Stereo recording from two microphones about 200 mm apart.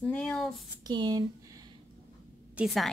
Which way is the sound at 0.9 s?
20° right (ahead or behind).